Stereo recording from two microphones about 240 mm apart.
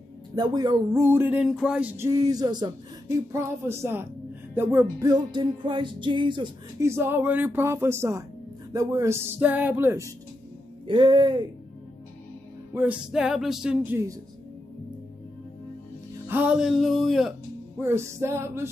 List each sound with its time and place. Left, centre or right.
0.4 s music: centre
10.9 s speech: centre
12.7 s speech: centre
16.3 s speech: centre
17.7 s music: centre